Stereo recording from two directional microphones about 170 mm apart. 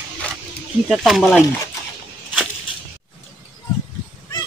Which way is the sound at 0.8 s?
Centre (ahead or behind).